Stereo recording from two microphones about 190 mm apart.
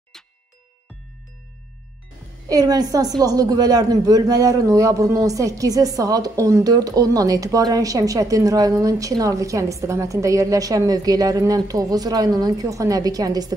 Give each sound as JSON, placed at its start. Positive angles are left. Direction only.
{"t": 2.4, "sound": "a woman's voice", "side_deg": -20}